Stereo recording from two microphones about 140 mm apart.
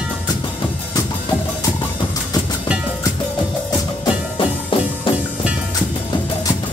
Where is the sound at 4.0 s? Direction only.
35° left (ahead or behind).